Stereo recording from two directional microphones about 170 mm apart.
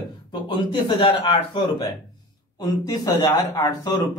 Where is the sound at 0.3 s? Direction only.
25° left (ahead or behind).